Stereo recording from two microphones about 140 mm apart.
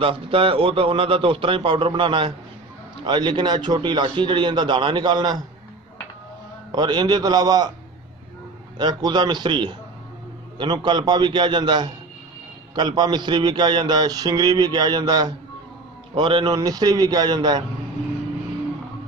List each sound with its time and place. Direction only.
0.0 s a man's voice: 40° right (ahead or behind)
6.7 s a man's voice: 30° right (ahead or behind)
8.7 s a man's voice: 30° right (ahead or behind)